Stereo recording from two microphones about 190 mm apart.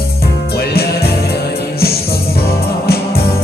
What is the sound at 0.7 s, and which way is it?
Music, 55° left (ahead or behind).